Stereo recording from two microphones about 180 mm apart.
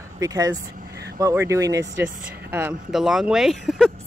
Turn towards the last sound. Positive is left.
turn(degrees=0)  # may be behind; listen again after turning